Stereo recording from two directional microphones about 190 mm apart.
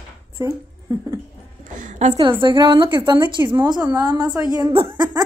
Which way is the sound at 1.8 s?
35° right (ahead or behind).